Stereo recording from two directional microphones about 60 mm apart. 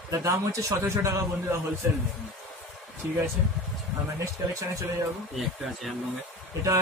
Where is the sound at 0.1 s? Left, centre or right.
Right.